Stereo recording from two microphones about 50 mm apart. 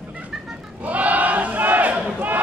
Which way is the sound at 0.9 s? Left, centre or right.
Right.